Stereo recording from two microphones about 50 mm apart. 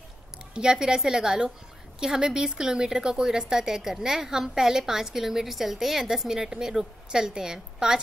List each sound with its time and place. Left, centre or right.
0.6 s a woman's voice: centre